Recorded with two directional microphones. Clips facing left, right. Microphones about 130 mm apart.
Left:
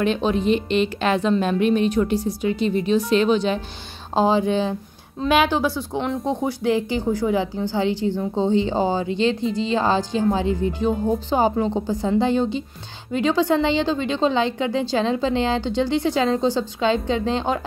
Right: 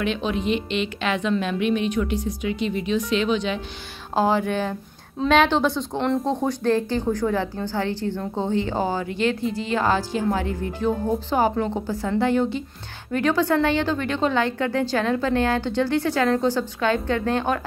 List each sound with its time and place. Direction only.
0.0 s a woman's voice: 35° left (ahead or behind)
4.1 s a woman's voice: 20° left (ahead or behind)
5.2 s a woman's voice: 5° left (ahead or behind)
6.2 s a woman's voice: 15° left (ahead or behind)